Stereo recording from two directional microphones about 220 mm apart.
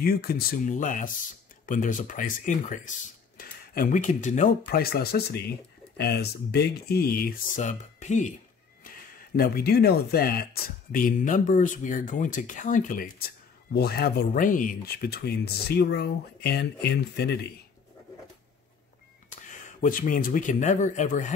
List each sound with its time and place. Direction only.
0.0 s speech: 45° left (ahead or behind)
9.4 s speech: 45° left (ahead or behind)
19.8 s speech: 40° left (ahead or behind)